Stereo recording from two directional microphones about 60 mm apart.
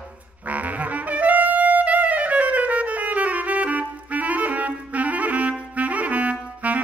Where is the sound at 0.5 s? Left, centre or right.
Right.